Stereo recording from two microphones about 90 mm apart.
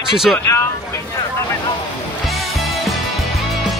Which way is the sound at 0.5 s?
30° left (ahead or behind).